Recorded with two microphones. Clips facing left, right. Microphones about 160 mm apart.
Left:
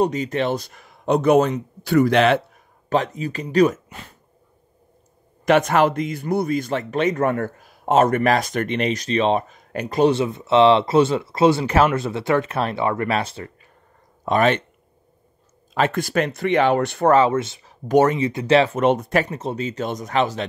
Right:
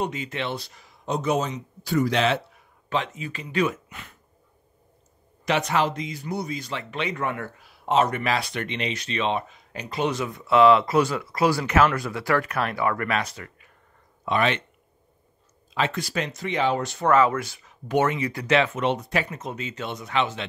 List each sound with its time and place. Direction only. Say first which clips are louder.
0.0 s speech: left 8 dB; 40° left (ahead or behind)
5.4 s speech: left 7 dB; 50° left (ahead or behind)
10.0 s speech: left 8 dB; 25° left (ahead or behind)
14.2 s speech: left 5 dB; 45° left (ahead or behind)
15.7 s speech: left 6 dB; 50° left (ahead or behind)
17.1 s speech: left 2 dB; 25° left (ahead or behind)
17.8 s speech: left 6 dB; 40° left (ahead or behind)
18.2 s speech: left 6 dB; 25° left (ahead or behind)
18.6 s speech: left 6 dB; 40° left (ahead or behind)
19.3 s speech: left 7 dB; 35° left (ahead or behind)